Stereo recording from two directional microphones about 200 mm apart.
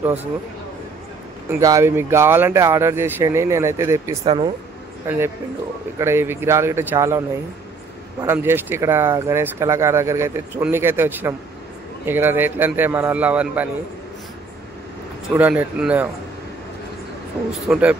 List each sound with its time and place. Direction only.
0.0 s speech: 10° right (ahead or behind)
1.6 s speech: 15° right (ahead or behind)
4.2 s speech: 25° right (ahead or behind)
5.0 s a man's voice: 10° right (ahead or behind)
15.3 s speech: 10° right (ahead or behind)
17.6 s a man's voice: 5° right (ahead or behind)